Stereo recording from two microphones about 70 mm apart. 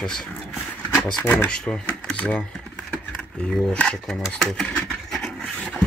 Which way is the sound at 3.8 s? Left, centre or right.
Centre.